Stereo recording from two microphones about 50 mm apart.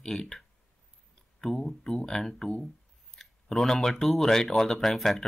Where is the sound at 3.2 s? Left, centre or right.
Centre.